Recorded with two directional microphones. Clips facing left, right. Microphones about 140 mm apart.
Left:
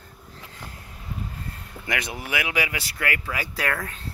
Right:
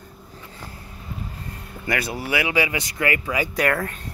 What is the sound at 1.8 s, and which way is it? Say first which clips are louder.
Speech: right 4 dB; centre (ahead or behind).